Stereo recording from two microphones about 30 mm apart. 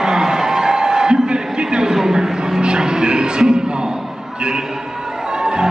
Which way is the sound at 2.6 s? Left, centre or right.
Right.